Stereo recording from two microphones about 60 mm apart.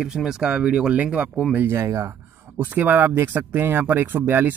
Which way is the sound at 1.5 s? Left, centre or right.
Right.